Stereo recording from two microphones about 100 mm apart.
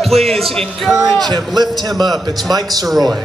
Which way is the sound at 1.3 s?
45° right (ahead or behind).